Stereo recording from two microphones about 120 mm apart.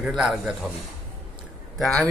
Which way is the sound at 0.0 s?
5° right (ahead or behind).